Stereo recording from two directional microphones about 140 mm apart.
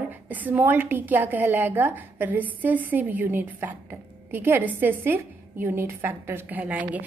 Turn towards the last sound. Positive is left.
turn(degrees=-10)  # may be behind; listen again after turning